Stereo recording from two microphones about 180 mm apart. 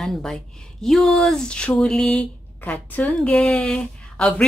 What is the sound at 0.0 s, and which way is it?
Speech, centre (ahead or behind).